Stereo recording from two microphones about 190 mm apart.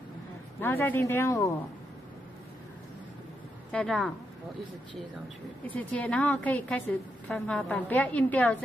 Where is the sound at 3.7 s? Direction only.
5° left (ahead or behind).